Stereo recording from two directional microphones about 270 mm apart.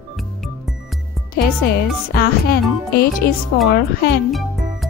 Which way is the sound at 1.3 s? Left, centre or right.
Left.